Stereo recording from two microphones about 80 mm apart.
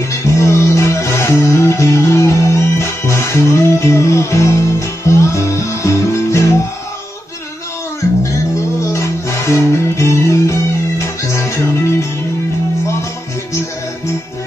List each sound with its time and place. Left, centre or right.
0.1 s music: left
8.8 s music: left